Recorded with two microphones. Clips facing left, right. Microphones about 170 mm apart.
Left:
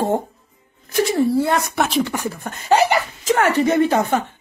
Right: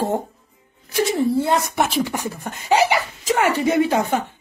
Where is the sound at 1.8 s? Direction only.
10° right (ahead or behind).